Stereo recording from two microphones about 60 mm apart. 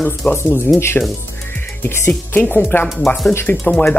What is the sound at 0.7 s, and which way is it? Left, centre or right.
Speech, left.